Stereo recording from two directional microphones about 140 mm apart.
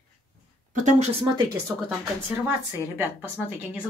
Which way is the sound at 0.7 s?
60° right (ahead or behind).